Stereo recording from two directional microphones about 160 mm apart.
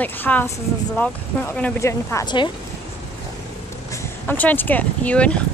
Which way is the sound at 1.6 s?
20° left (ahead or behind).